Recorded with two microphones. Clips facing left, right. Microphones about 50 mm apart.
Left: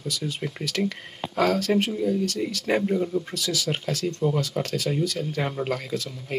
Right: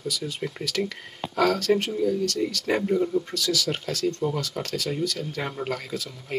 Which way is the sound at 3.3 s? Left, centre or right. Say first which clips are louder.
Right 1 dB; centre.